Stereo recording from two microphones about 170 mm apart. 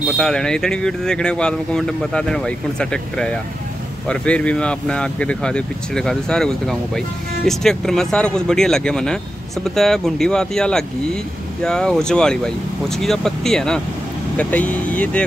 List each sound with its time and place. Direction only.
0.2 s speech: 5° left (ahead or behind)